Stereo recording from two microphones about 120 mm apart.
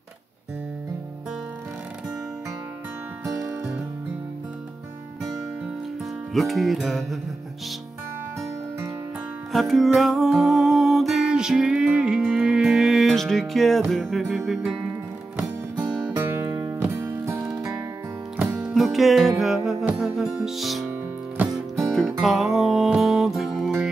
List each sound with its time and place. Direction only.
3.3 s music: 20° right (ahead or behind)
6.3 s music: centre (ahead or behind)
9.5 s music: centre (ahead or behind)
16.1 s music: 25° right (ahead or behind)
18.6 s music: 5° right (ahead or behind)